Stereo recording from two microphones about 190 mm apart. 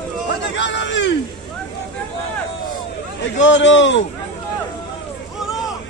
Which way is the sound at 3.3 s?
75° left (ahead or behind).